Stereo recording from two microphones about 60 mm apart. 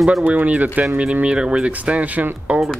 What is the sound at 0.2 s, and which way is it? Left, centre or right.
Speech, right.